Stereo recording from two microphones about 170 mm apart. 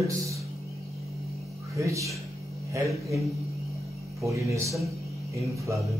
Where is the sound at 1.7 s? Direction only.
20° right (ahead or behind).